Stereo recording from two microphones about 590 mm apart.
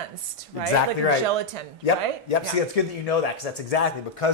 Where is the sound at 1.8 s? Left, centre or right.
Left.